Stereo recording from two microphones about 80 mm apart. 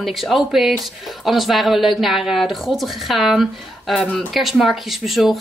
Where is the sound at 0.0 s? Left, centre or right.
Centre.